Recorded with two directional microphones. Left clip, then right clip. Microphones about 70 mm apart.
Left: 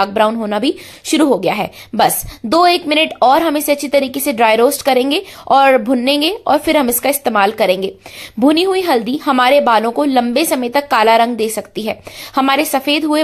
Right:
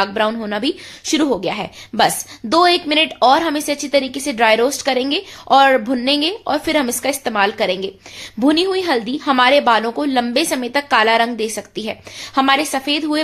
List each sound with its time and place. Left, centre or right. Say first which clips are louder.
0.0 s a woman's voice: left 4 dB; left
1.3 s a woman's voice: left 5 dB; left
8.4 s a woman's voice: left 3 dB; left